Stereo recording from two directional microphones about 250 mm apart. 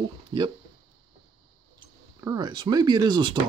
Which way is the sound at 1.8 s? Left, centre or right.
Centre.